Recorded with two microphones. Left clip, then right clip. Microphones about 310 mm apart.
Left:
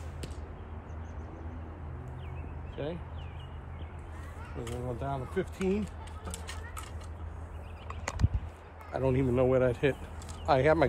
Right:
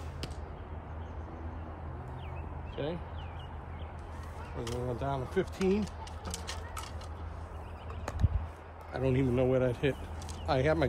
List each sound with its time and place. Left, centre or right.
2.7 s speech: centre
4.6 s speech: centre
6.4 s horse: centre
8.9 s speech: centre